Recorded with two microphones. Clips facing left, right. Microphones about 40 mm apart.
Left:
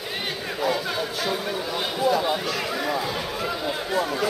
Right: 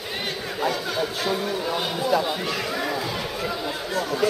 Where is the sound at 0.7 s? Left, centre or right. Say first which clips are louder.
Even; centre.